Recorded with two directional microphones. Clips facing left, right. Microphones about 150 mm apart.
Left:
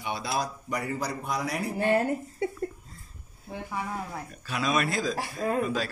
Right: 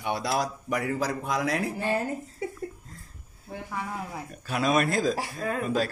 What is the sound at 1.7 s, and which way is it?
Speech, 55° left (ahead or behind).